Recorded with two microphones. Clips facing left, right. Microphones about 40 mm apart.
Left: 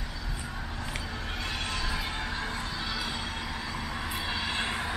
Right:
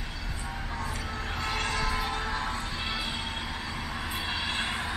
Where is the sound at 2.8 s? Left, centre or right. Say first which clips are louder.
Right 1 dB; right.